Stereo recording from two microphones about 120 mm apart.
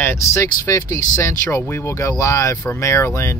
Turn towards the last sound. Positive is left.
turn(degrees=20)  # may be behind; listen again after turning